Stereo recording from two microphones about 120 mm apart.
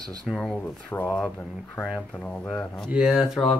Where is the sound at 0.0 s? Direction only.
5° left (ahead or behind).